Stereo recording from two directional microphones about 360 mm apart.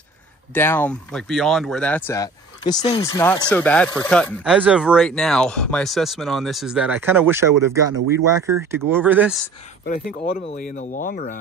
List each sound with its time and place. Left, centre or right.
0.6 s speech: centre
9.8 s speech: left